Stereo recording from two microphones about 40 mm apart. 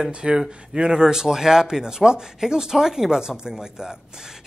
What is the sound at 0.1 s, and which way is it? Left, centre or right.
Speech, right.